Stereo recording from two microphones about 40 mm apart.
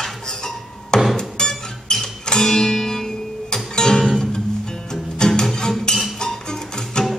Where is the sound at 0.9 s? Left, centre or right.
Centre.